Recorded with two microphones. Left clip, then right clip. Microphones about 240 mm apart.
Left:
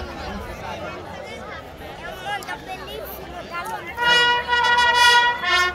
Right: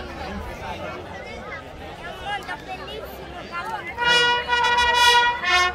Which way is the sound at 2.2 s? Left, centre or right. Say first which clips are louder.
Left 1 dB; left.